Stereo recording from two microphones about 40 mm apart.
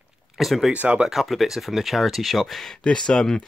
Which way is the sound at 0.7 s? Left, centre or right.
Right.